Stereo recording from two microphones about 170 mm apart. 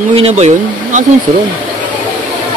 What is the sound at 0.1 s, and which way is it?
Speech, 35° right (ahead or behind).